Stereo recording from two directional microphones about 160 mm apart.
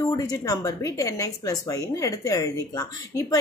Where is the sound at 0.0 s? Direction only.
25° left (ahead or behind).